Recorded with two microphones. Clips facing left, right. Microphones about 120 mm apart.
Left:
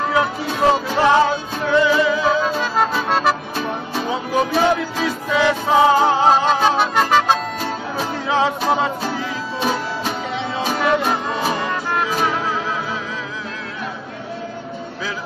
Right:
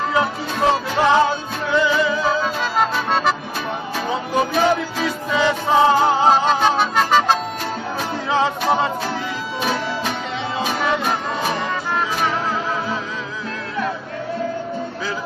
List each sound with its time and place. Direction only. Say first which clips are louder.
0.1 s music: left 1 dB; 5° left (ahead or behind)
10.6 s music: left 3 dB; centre (ahead or behind)